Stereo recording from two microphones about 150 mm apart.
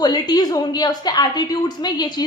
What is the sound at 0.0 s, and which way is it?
A woman's voice, 30° left (ahead or behind).